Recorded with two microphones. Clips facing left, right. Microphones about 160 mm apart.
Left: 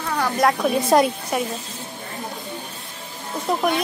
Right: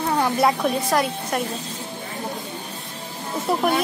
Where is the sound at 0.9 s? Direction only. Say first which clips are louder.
Left 7 dB; 25° left (ahead or behind).